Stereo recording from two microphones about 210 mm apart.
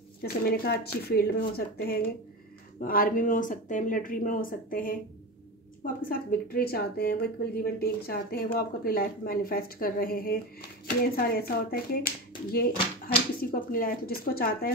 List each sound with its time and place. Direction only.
0.2 s a woman's voice: 45° left (ahead or behind)
6.0 s a woman's voice: 45° left (ahead or behind)